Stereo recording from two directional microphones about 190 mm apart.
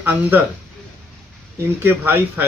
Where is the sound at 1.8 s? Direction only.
10° right (ahead or behind).